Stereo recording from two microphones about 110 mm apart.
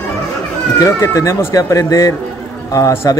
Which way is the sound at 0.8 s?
30° left (ahead or behind).